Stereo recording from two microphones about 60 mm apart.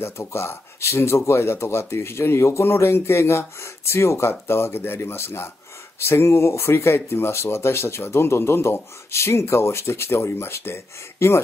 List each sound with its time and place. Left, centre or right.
0.0 s speech: left